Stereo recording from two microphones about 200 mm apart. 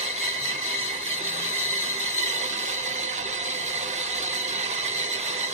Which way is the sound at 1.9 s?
35° right (ahead or behind).